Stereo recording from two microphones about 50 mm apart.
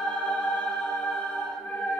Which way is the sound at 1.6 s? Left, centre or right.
Centre.